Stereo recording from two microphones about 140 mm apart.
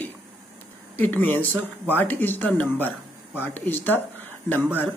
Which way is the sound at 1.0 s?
15° left (ahead or behind).